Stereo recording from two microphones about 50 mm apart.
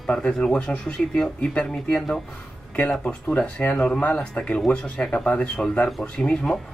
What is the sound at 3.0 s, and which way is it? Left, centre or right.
Speech, left.